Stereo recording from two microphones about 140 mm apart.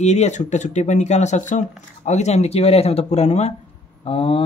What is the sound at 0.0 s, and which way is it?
Speech, 55° left (ahead or behind).